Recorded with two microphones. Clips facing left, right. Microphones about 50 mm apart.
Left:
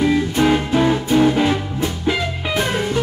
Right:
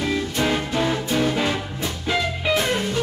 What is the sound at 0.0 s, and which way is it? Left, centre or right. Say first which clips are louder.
Music: left 6 dB; centre.